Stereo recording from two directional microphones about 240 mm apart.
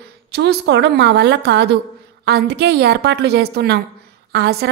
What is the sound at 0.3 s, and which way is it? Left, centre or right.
A woman's voice, right.